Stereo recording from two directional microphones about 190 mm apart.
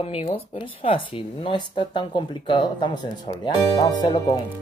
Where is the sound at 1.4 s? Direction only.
25° left (ahead or behind).